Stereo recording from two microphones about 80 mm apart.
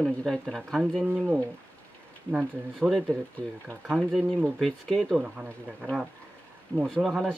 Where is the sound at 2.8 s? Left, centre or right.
Centre.